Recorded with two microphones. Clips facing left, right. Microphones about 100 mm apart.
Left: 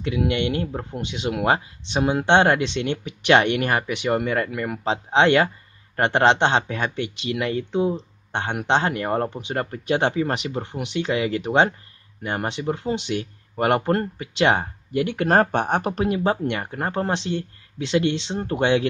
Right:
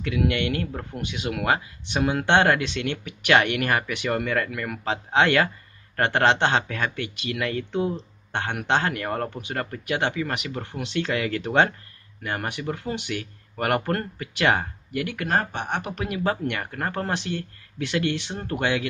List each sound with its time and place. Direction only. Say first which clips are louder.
0.0 s speech: left 2 dB; 20° left (ahead or behind)
15.2 s speech: left 8 dB; 45° left (ahead or behind); by 18.9 s 25° left (ahead or behind)